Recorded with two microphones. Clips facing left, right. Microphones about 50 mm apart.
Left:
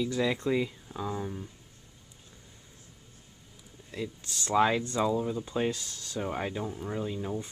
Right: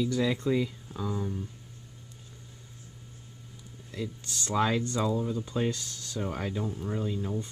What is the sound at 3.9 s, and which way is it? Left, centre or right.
Speech, centre.